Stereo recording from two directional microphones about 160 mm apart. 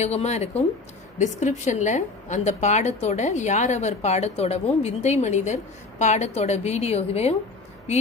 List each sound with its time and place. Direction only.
0.0 s a woman's voice: 45° left (ahead or behind)